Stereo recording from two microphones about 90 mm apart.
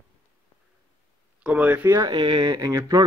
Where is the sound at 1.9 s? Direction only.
45° right (ahead or behind).